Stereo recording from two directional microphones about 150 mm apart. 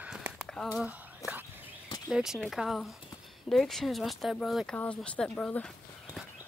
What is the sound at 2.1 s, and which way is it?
Speech, 5° right (ahead or behind).